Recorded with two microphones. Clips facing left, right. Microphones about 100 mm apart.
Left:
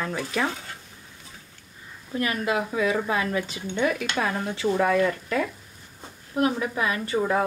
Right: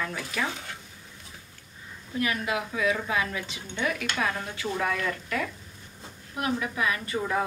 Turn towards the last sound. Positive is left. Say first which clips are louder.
# left 5 dB
turn(degrees=30)  # may be behind; listen again after turning